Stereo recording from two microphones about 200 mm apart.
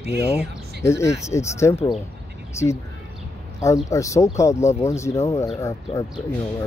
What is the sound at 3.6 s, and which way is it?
Speech, 15° left (ahead or behind).